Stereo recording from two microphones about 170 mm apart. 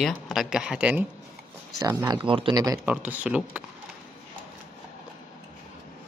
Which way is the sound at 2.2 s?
30° right (ahead or behind).